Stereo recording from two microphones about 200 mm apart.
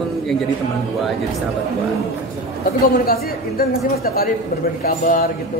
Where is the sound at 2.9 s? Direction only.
45° left (ahead or behind).